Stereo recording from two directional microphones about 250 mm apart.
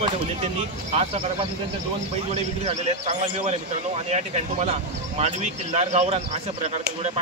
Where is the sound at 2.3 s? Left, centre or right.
Right.